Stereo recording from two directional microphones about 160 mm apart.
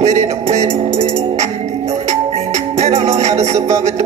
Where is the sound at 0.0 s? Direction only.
45° right (ahead or behind).